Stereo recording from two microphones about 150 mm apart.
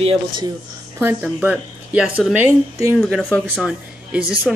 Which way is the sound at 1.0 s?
10° right (ahead or behind).